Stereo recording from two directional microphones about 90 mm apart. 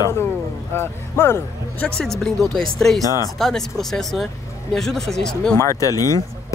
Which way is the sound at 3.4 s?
5° left (ahead or behind).